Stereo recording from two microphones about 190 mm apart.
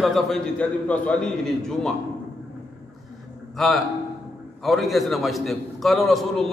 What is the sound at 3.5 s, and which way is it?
A man's voice, centre (ahead or behind).